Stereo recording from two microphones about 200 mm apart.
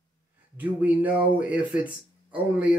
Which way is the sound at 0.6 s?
10° right (ahead or behind).